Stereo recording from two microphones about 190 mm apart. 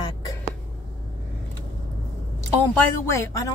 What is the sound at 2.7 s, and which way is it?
Speech, 15° left (ahead or behind).